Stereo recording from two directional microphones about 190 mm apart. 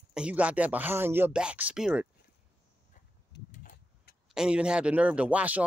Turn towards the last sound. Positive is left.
turn(degrees=-5)  # may be behind; listen again after turning